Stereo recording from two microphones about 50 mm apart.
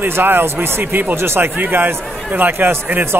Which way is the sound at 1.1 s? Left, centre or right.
Right.